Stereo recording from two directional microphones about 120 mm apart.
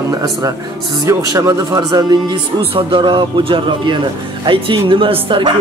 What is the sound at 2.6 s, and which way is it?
A woman's voice, 50° right (ahead or behind).